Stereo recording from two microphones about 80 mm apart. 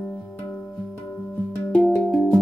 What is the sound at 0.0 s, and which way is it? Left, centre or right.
Music, centre.